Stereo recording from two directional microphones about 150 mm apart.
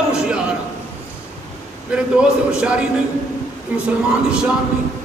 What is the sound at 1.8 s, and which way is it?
A man's voice, 5° right (ahead or behind).